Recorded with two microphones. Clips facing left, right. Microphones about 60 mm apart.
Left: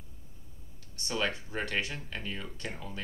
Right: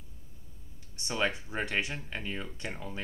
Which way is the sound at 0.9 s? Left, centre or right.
Centre.